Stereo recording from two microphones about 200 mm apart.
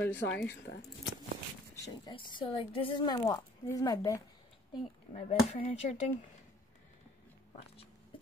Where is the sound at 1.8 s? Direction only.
20° left (ahead or behind).